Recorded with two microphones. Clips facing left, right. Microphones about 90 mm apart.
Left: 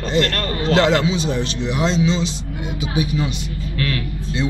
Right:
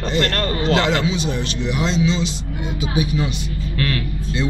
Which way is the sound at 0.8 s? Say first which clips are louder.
Left 3 dB; 30° left (ahead or behind).